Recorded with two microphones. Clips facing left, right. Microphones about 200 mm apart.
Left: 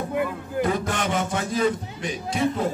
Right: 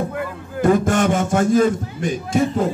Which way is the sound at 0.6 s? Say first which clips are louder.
Right 8 dB; 45° right (ahead or behind).